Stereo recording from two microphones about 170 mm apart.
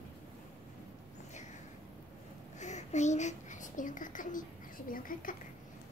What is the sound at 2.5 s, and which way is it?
Whispering, 45° left (ahead or behind).